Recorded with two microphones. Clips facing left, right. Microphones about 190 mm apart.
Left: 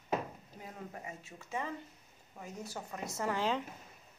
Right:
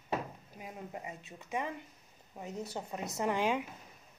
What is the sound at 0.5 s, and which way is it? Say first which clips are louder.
A woman's voice: right 3 dB; 15° right (ahead or behind).